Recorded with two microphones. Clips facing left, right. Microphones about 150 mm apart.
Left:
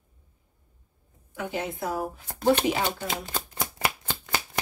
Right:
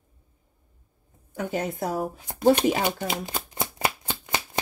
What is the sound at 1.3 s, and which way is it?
Speech, 40° right (ahead or behind).